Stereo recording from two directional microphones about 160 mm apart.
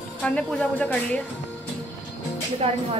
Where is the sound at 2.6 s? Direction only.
40° right (ahead or behind).